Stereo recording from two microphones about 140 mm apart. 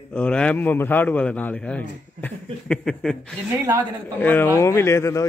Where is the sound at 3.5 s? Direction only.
15° right (ahead or behind).